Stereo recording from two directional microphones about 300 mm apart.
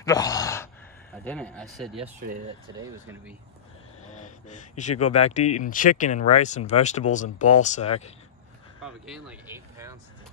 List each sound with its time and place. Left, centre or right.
0.0 s sigh: centre
1.2 s speech: centre
4.1 s a sound: left
5.1 s speech: left
8.8 s speech: centre